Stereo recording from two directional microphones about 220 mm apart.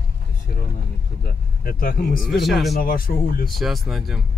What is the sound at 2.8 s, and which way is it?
Speech, 40° left (ahead or behind).